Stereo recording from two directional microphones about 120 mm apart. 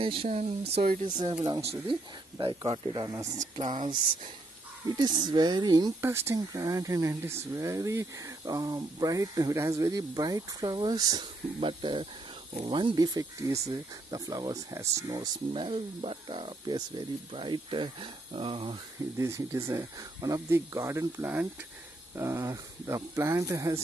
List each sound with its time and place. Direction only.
0.0 s speech: 50° right (ahead or behind)
1.0 s speech: 35° right (ahead or behind)
1.6 s speech: 55° right (ahead or behind)
2.3 s speech: 45° right (ahead or behind)
3.5 s speech: 40° right (ahead or behind)
5.9 s speech: 20° right (ahead or behind)
11.6 s speech: 45° right (ahead or behind); by 15.2 s 30° right (ahead or behind)
15.5 s speech: 45° right (ahead or behind)
19.1 s speech: 25° right (ahead or behind)